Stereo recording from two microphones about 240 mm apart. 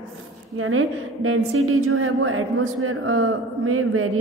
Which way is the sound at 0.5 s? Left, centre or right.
Right.